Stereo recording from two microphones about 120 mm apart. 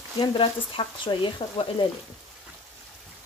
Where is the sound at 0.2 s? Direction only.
45° left (ahead or behind).